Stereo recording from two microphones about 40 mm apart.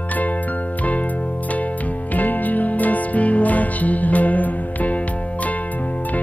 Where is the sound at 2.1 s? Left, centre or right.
Left.